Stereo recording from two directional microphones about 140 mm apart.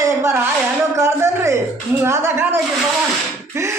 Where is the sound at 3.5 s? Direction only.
20° right (ahead or behind).